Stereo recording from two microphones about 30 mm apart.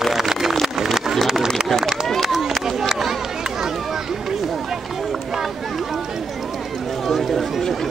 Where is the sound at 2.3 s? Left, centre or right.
Centre.